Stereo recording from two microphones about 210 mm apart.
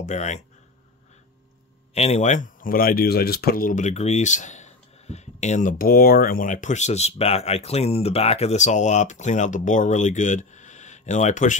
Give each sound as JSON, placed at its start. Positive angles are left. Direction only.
{"t": 0.0, "sound": "speech", "side_deg": 35}
{"t": 2.0, "sound": "speech", "side_deg": 30}